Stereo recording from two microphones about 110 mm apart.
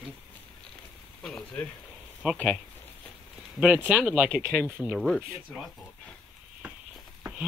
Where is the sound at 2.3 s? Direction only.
5° left (ahead or behind).